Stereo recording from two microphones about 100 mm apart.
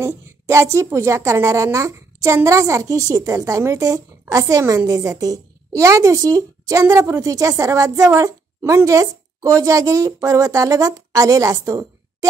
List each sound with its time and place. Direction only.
0.0 s a woman's voice: 30° right (ahead or behind)